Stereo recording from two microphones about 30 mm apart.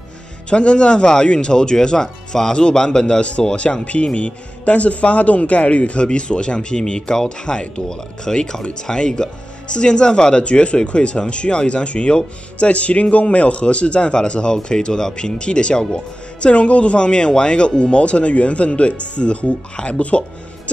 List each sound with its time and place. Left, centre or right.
0.5 s speech: left
3.8 s speech: left
10.4 s speech: left
16.4 s speech: left